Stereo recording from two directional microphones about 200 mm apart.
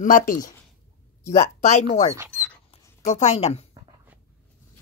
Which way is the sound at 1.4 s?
35° left (ahead or behind).